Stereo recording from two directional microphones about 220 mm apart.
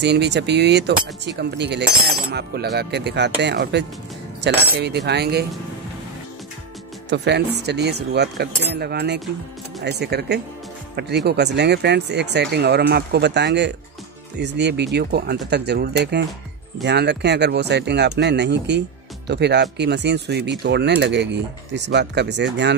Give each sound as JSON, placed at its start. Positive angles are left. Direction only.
{"t": 0.0, "sound": "speech", "side_deg": -50}
{"t": 7.1, "sound": "speech", "side_deg": -50}